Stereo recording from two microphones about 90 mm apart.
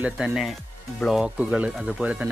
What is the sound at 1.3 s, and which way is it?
Speech, 15° right (ahead or behind).